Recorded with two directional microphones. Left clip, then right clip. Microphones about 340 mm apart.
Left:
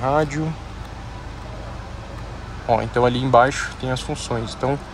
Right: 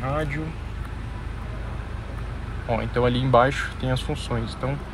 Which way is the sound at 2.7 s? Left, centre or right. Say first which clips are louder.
Left 5 dB; centre.